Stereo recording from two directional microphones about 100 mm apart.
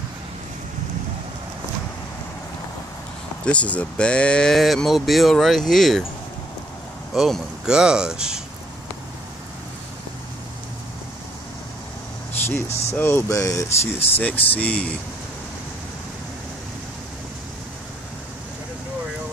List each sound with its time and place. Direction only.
3.4 s speech: 15° left (ahead or behind)
7.2 s speech: centre (ahead or behind)
12.6 s speech: 90° left
12.9 s speech: 25° left (ahead or behind)
13.9 s speech: 20° left (ahead or behind)